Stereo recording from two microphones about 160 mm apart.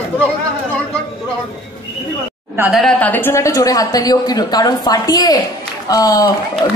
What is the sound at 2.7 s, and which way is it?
A woman's voice, centre (ahead or behind).